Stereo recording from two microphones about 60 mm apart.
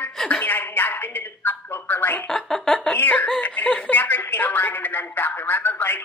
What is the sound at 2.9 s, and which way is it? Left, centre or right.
Speech, left.